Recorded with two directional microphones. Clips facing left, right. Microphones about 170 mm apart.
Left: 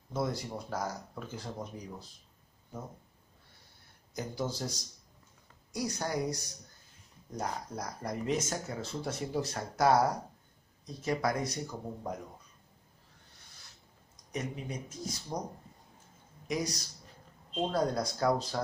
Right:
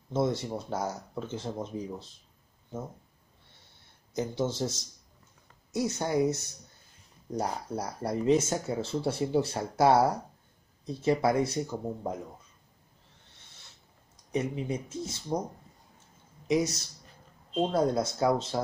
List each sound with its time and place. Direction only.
0.1 s speech: 25° right (ahead or behind)
4.1 s speech: 25° right (ahead or behind)
14.3 s speech: 30° right (ahead or behind)
17.6 s speech: 25° right (ahead or behind)